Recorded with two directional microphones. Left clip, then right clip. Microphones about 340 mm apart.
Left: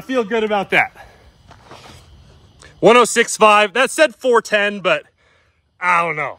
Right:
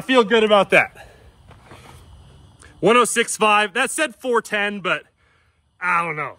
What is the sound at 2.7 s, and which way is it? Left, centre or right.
Speech, centre.